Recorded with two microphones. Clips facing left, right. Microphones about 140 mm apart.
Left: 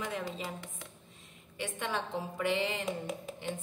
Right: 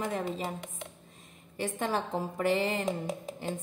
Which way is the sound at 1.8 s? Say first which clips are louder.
Right 4 dB; 40° right (ahead or behind).